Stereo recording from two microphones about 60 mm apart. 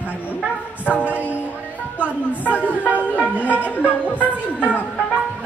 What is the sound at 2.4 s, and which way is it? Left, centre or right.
Music, left.